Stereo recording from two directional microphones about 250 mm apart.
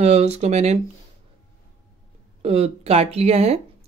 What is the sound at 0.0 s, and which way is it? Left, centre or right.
Speech, right.